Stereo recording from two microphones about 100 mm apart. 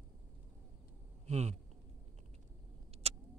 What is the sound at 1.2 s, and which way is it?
Speech, 90° right.